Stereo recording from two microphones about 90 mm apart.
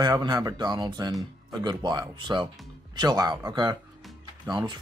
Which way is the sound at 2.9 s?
50° right (ahead or behind).